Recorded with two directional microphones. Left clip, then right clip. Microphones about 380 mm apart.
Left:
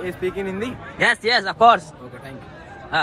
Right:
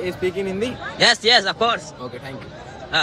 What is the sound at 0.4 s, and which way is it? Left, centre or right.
A man's voice, centre.